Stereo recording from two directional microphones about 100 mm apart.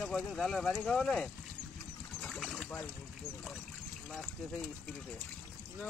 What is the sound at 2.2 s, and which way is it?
Boat, 5° left (ahead or behind).